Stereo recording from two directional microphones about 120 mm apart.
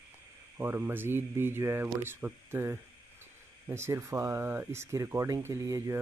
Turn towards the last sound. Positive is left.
turn(degrees=-25)  # may be behind; listen again after turning